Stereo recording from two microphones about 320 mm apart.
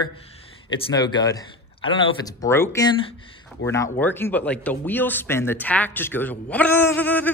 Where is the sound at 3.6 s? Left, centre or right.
Left.